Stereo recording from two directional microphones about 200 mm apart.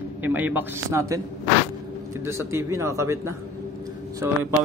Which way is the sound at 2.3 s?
15° right (ahead or behind).